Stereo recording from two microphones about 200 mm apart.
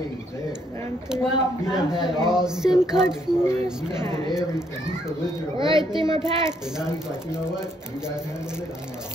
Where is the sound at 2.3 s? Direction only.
5° right (ahead or behind).